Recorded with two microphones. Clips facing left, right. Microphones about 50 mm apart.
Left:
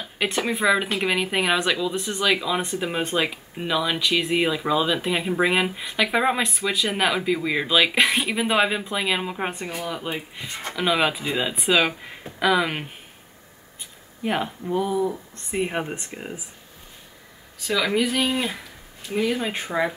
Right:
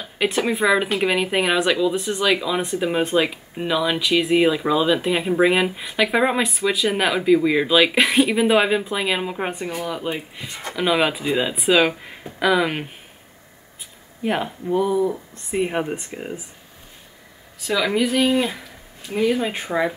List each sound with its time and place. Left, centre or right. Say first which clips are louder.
0.0 s speech: right 4 dB; centre
14.2 s speech: right 2 dB; centre
17.6 s speech: right 2 dB; centre